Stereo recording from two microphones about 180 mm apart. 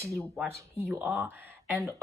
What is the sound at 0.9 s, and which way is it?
Speech, 10° right (ahead or behind).